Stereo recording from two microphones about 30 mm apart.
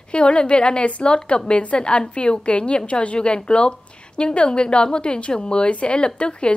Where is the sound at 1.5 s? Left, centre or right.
Left.